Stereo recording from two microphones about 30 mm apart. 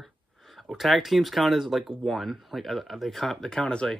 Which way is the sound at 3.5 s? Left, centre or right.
Left.